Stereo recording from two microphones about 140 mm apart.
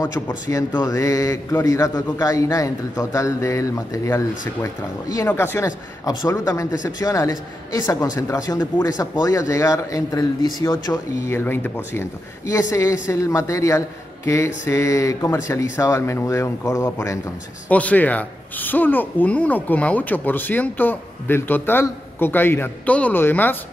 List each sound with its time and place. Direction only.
0.3 s speech: 25° left (ahead or behind)
17.6 s speech: 10° left (ahead or behind)